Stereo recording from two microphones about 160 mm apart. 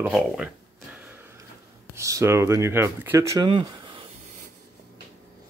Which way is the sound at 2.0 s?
20° right (ahead or behind).